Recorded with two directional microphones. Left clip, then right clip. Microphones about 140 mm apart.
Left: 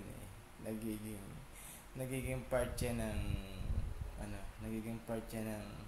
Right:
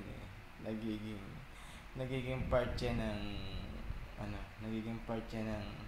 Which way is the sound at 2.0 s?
20° left (ahead or behind).